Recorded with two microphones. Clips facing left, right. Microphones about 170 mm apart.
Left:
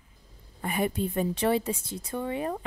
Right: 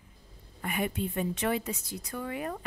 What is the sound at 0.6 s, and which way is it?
A woman's voice, 35° left (ahead or behind).